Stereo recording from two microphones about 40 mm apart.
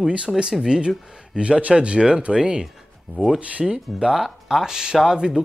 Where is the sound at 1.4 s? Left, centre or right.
Right.